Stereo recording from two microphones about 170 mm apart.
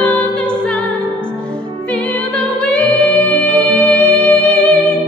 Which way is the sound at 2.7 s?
10° left (ahead or behind).